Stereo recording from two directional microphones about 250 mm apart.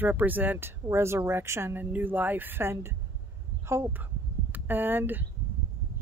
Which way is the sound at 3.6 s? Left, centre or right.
Centre.